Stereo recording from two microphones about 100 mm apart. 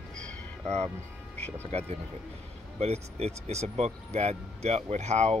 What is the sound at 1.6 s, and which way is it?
Speech, 90° right.